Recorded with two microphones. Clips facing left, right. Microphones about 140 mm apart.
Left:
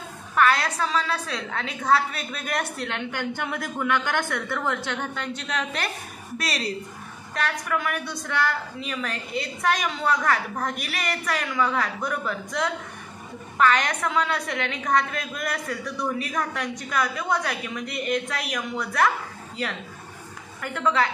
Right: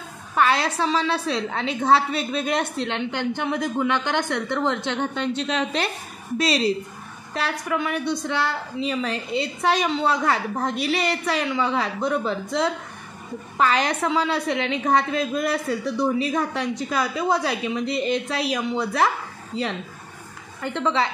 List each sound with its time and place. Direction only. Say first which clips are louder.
0.3 s a woman's voice: right 1 dB; 30° right (ahead or behind)